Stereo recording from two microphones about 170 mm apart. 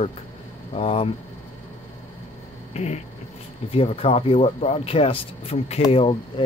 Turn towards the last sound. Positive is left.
turn(degrees=30)  # may be behind; listen again after turning